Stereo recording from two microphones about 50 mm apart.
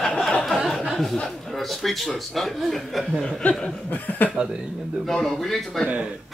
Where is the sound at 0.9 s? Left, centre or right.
Centre.